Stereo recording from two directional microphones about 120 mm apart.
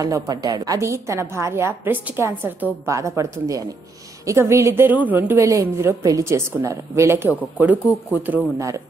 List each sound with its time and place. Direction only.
0.0 s a woman's voice: 30° right (ahead or behind); by 8.4 s 15° right (ahead or behind)
8.5 s a woman's voice: 25° right (ahead or behind)